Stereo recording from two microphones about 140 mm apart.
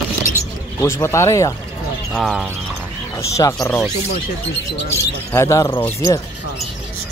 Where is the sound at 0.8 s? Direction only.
20° left (ahead or behind).